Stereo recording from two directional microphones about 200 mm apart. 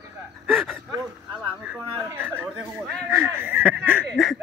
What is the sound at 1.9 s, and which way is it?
Speech, 20° right (ahead or behind).